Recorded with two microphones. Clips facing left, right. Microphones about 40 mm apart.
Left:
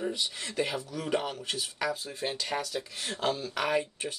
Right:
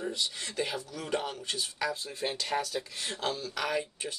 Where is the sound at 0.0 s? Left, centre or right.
Centre.